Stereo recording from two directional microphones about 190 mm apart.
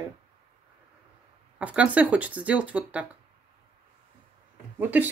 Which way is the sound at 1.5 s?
5° right (ahead or behind).